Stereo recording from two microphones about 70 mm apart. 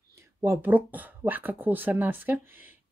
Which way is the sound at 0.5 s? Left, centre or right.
Right.